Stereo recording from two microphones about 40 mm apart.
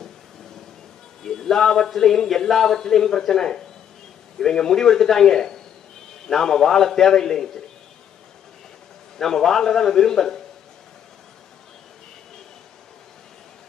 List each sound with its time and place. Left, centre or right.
1.2 s a man's voice: centre
9.2 s a man's voice: centre